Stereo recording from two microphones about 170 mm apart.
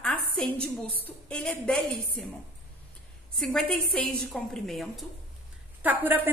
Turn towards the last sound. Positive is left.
turn(degrees=-10)  # may be behind; listen again after turning